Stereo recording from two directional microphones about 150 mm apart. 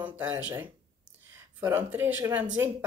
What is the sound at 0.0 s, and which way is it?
Speech, 10° right (ahead or behind).